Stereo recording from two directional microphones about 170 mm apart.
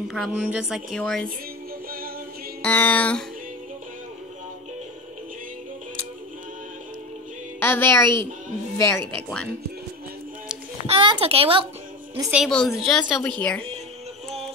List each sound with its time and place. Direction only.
0.1 s speech: centre (ahead or behind)
1.9 s music: 60° right (ahead or behind)
2.6 s speech: 10° left (ahead or behind)
7.6 s speech: 15° left (ahead or behind)
10.9 s a child's voice: 35° right (ahead or behind)
12.3 s speech: centre (ahead or behind)